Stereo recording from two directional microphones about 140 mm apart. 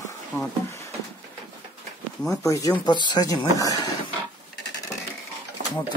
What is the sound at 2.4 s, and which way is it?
Speech, 25° left (ahead or behind).